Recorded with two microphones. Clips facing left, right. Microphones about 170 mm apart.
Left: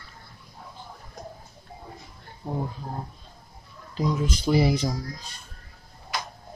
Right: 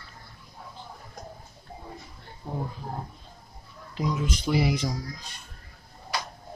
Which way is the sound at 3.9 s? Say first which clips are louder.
Left 3 dB; 35° left (ahead or behind).